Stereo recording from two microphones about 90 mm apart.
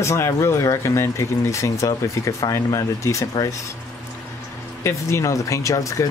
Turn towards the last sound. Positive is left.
turn(degrees=35)  # may be behind; listen again after turning